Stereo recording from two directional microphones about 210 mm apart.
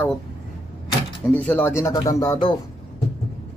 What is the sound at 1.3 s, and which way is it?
Speech, 10° left (ahead or behind).